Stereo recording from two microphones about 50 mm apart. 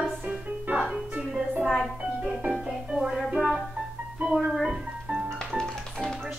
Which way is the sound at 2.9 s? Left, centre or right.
Centre.